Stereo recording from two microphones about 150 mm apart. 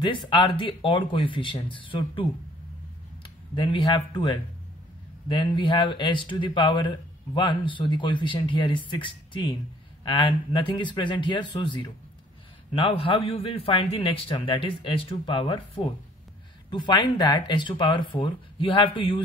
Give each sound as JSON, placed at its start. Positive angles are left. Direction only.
{"t": 0.0, "sound": "speech", "side_deg": 35}